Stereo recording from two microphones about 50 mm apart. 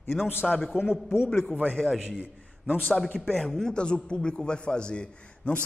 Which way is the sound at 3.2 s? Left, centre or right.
Centre.